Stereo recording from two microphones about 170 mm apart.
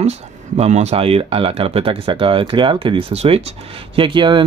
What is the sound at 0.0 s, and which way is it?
Speech, 40° right (ahead or behind).